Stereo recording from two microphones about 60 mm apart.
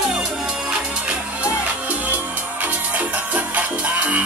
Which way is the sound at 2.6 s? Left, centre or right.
Right.